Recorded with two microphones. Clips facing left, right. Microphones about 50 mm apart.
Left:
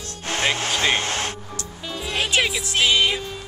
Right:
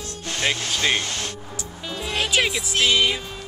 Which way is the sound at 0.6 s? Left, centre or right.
Left.